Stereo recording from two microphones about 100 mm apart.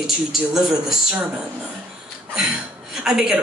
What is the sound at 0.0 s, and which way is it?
Speech, 5° right (ahead or behind).